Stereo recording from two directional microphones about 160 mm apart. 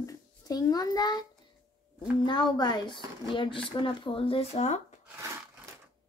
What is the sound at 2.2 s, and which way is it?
Speech, 25° left (ahead or behind).